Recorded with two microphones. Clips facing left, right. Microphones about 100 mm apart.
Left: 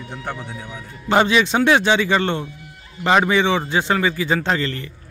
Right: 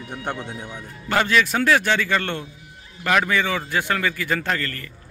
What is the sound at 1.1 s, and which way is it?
Speech, 20° left (ahead or behind).